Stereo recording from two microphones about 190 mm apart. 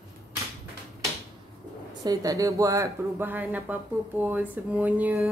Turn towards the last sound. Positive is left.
turn(degrees=-10)  # may be behind; listen again after turning